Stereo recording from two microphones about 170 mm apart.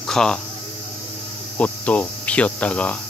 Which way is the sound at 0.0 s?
5° left (ahead or behind).